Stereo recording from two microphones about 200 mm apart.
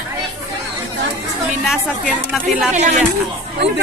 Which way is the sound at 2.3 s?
Centre (ahead or behind).